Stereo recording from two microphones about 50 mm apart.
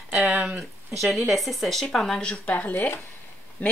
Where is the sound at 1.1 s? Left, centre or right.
Centre.